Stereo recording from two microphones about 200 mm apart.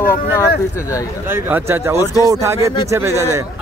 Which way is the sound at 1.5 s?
10° right (ahead or behind).